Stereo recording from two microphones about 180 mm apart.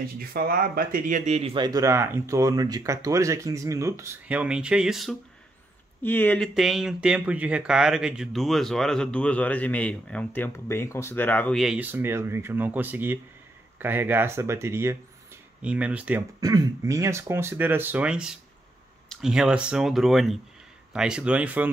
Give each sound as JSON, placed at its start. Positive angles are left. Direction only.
{"t": 0.2, "sound": "speech", "side_deg": -55}
{"t": 6.0, "sound": "speech", "side_deg": 10}
{"t": 11.6, "sound": "speech", "side_deg": -5}
{"t": 16.3, "sound": "speech", "side_deg": -20}